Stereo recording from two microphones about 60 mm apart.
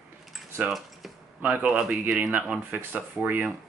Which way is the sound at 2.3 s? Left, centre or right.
Right.